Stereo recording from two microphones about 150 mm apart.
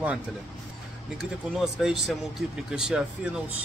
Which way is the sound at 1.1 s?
Centre (ahead or behind).